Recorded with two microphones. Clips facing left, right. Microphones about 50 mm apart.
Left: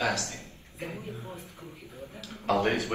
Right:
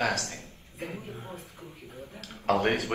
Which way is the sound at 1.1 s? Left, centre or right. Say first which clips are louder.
Even; right.